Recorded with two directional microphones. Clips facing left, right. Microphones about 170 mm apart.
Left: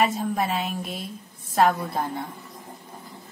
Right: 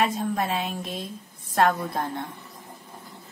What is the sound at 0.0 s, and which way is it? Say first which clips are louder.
A woman's voice: left 1 dB; 5° left (ahead or behind).